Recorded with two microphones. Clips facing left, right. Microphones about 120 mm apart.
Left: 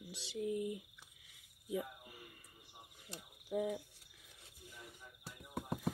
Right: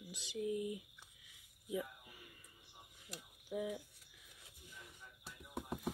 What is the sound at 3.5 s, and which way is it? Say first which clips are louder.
Speech: left 4 dB; 40° left (ahead or behind).